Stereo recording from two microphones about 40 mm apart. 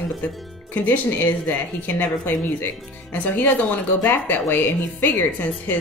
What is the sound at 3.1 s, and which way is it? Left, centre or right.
Speech, left.